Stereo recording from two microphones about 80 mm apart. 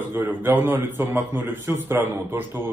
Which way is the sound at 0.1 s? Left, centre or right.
Right.